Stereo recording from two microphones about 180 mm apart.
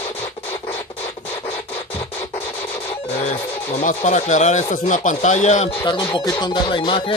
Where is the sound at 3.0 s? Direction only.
35° left (ahead or behind).